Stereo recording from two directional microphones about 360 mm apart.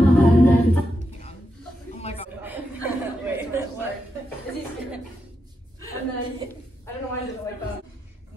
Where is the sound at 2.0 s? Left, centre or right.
Centre.